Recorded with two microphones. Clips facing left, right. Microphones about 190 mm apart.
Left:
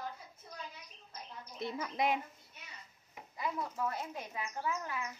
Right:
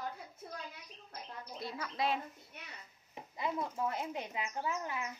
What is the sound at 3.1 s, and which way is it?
Speech, 20° right (ahead or behind).